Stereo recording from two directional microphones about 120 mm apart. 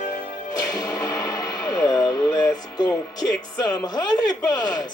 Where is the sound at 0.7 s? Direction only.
30° left (ahead or behind).